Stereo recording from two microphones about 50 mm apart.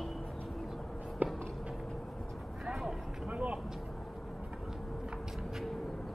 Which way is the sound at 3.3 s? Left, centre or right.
Right.